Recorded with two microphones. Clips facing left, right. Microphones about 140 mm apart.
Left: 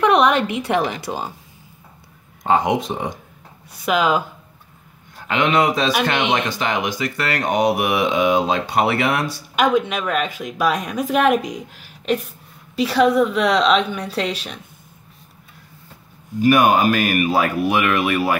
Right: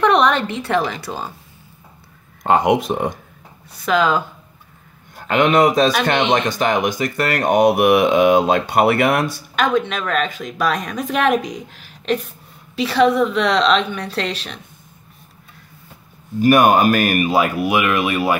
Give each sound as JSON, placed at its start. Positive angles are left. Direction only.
{"t": 0.0, "sound": "a woman's voice", "side_deg": 5}
{"t": 2.4, "sound": "speech", "side_deg": -60}
{"t": 3.8, "sound": "a woman's voice", "side_deg": 10}
{"t": 5.3, "sound": "speech", "side_deg": -45}
{"t": 9.6, "sound": "a woman's voice", "side_deg": 10}
{"t": 16.3, "sound": "speech", "side_deg": -50}
{"t": 17.3, "sound": "speech", "side_deg": -15}